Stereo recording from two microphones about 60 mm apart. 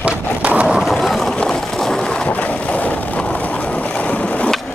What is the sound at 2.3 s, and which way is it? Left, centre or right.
Boat, left.